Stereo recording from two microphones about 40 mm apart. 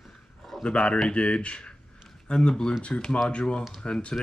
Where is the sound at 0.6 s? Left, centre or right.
Left.